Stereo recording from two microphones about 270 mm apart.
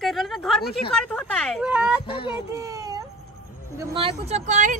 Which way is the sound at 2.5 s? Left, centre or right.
Centre.